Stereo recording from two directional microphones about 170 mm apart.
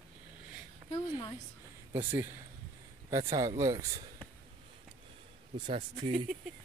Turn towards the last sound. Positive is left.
turn(degrees=-30)  # may be behind; listen again after turning